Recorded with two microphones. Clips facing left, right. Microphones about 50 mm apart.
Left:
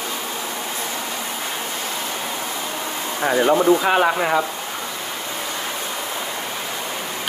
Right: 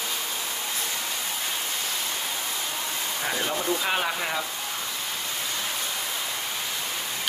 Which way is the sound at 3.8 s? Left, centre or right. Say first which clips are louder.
Left 9 dB; left.